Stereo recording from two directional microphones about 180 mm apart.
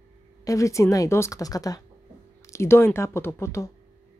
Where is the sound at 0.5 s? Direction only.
15° left (ahead or behind).